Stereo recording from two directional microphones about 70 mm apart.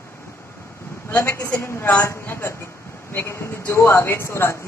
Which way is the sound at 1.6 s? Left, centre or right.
Left.